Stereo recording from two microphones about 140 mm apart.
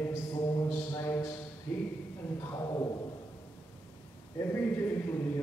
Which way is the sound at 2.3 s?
25° left (ahead or behind).